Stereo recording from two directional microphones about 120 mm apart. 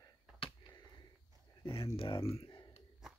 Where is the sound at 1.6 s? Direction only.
50° left (ahead or behind).